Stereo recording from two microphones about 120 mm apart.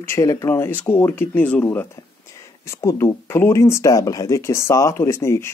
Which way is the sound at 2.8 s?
25° left (ahead or behind).